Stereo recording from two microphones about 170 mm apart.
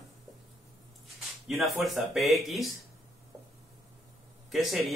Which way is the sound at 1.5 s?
Centre (ahead or behind).